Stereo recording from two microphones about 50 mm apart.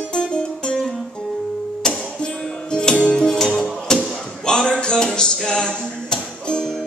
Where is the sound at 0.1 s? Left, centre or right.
Centre.